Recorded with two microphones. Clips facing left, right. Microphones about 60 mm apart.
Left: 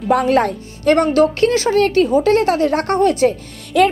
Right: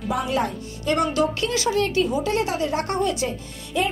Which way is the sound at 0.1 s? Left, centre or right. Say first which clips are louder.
Left 10 dB; left.